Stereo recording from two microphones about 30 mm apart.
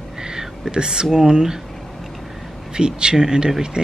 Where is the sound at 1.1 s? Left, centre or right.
Centre.